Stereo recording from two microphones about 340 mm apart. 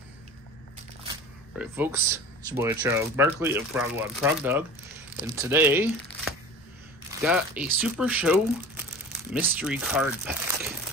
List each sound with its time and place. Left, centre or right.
1.6 s speech: centre